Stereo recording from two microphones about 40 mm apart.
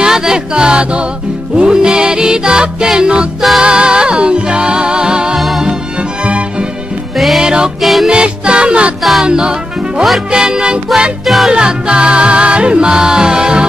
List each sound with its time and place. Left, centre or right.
0.0 s music: centre
3.3 s music: centre
3.6 s music: right
7.2 s music: centre
7.4 s music: centre
7.8 s music: centre
8.1 s music: right
11.2 s music: centre
11.5 s music: right